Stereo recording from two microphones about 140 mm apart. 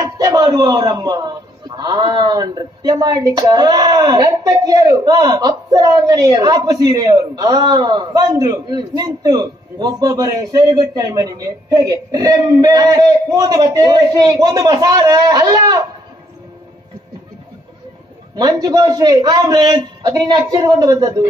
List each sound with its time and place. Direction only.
0.0 s a man's voice: 25° right (ahead or behind)
18.3 s a man's voice: 25° right (ahead or behind)